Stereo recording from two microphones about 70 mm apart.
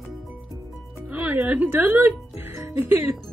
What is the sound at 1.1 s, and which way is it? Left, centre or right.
A woman's voice, right.